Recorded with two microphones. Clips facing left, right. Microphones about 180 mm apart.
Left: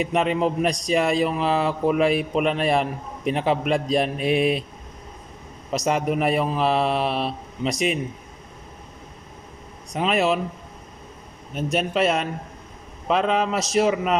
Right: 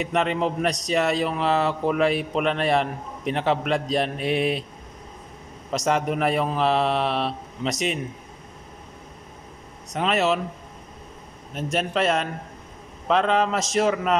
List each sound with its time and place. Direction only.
0.0 s a man's voice: 10° left (ahead or behind)
5.7 s a man's voice: 10° left (ahead or behind)
9.9 s a man's voice: 10° left (ahead or behind)
11.5 s a man's voice: 5° left (ahead or behind)